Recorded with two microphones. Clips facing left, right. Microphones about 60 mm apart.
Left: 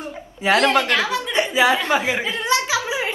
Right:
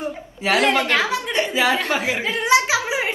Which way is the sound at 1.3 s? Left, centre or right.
Left.